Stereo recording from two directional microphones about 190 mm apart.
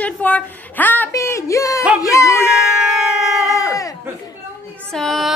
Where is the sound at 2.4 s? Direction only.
5° right (ahead or behind).